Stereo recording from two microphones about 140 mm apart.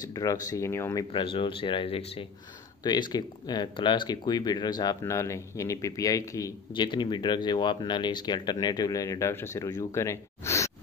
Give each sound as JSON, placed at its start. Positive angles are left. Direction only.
{"t": 0.1, "sound": "speech", "side_deg": 25}
{"t": 1.1, "sound": "speech", "side_deg": 40}
{"t": 2.8, "sound": "speech", "side_deg": 30}